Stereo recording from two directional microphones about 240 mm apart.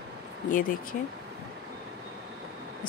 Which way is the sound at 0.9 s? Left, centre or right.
Left.